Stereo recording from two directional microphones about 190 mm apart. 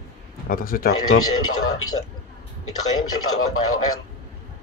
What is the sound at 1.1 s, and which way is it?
Speech, 90° left.